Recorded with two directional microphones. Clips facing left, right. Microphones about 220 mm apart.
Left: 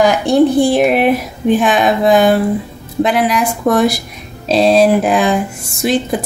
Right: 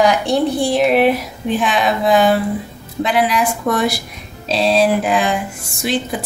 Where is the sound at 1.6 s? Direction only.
50° left (ahead or behind).